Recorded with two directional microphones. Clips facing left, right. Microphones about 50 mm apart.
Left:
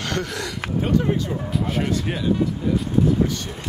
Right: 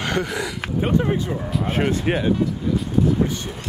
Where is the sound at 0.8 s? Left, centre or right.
Right.